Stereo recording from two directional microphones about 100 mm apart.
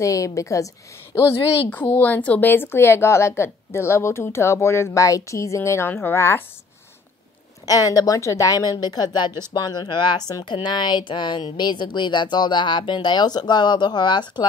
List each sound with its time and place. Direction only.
0.0 s a woman's voice: 30° left (ahead or behind)
1.7 s a woman's voice: 15° left (ahead or behind)
7.6 s a woman's voice: 40° left (ahead or behind)